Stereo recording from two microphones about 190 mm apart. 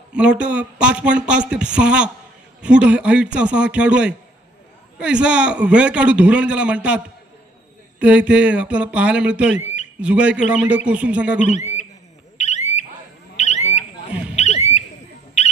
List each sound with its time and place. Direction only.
0.1 s a man's voice: 5° right (ahead or behind)
8.0 s speech: 5° right (ahead or behind)
11.4 s a sound: 35° left (ahead or behind)
15.4 s owl: 35° left (ahead or behind)